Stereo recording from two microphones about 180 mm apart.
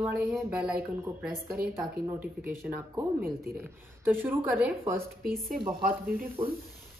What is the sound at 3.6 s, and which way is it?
Speech, 10° right (ahead or behind).